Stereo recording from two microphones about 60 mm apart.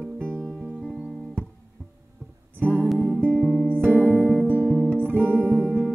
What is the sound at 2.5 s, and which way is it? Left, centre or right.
Music, right.